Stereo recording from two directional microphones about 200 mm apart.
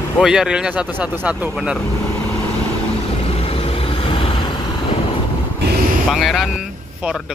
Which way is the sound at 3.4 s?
30° left (ahead or behind).